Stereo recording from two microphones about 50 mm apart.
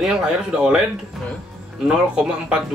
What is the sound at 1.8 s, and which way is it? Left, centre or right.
Speech, centre.